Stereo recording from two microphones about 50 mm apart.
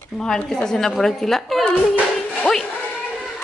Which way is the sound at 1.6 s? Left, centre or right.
Left.